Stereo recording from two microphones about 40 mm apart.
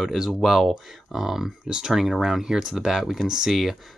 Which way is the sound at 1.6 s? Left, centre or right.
Centre.